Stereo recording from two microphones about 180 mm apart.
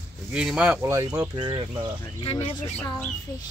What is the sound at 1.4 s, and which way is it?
Speech, 30° right (ahead or behind).